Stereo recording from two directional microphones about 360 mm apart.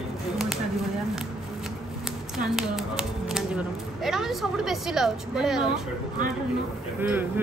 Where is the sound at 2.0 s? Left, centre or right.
Centre.